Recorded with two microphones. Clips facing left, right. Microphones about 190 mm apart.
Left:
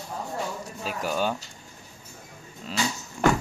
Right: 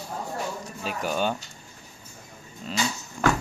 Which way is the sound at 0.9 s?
Centre (ahead or behind).